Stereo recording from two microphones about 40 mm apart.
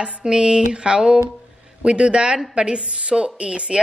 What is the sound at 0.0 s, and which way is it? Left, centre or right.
A woman's voice, right.